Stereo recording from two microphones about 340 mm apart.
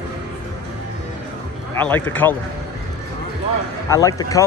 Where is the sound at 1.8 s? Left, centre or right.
Centre.